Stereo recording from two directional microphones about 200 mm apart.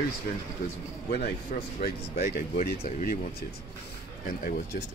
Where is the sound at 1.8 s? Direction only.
50° left (ahead or behind).